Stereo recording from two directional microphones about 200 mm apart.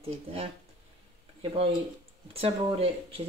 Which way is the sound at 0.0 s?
30° right (ahead or behind).